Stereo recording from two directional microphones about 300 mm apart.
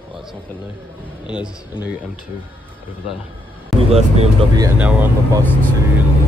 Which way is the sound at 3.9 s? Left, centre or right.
Right.